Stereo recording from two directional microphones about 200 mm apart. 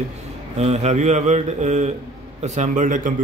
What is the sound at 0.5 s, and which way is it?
Speech, 30° right (ahead or behind).